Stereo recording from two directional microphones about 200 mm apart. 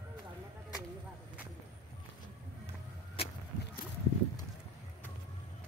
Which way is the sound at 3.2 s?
30° left (ahead or behind).